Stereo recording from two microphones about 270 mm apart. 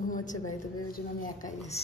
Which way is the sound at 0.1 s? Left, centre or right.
Left.